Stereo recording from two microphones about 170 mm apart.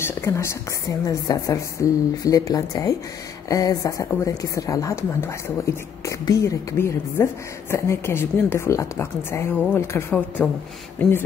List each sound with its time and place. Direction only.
0.0 s a woman's voice: 15° left (ahead or behind)